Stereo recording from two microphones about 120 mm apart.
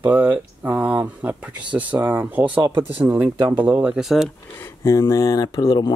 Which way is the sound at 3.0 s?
15° right (ahead or behind).